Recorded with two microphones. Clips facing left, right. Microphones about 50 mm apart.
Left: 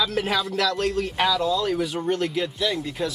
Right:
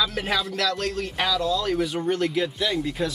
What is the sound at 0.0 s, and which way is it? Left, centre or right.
A man's voice, centre.